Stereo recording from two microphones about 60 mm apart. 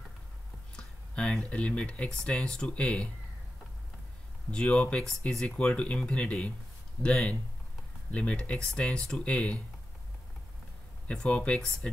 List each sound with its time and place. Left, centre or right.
0.7 s speech: centre
4.5 s speech: centre
5.3 s speech: centre
11.1 s speech: left